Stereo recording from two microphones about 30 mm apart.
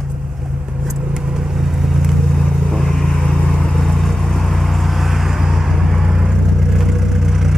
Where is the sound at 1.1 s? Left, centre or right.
Centre.